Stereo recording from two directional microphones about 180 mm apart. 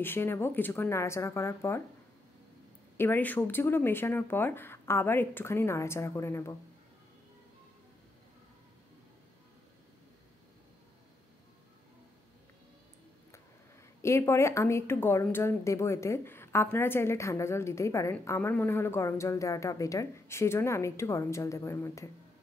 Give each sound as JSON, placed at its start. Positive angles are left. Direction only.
{"t": 0.0, "sound": "speech", "side_deg": 10}
{"t": 3.0, "sound": "speech", "side_deg": 10}
{"t": 14.0, "sound": "speech", "side_deg": 15}